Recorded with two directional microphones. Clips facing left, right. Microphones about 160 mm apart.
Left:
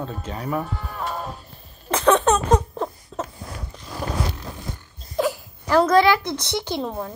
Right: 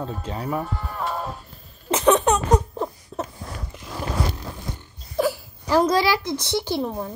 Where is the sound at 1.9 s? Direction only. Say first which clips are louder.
Even; 20° right (ahead or behind).